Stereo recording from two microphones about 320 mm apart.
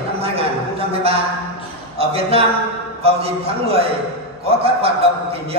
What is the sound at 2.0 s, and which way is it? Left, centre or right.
A man's voice, centre.